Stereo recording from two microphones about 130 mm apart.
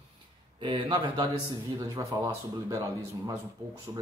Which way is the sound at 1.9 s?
25° right (ahead or behind).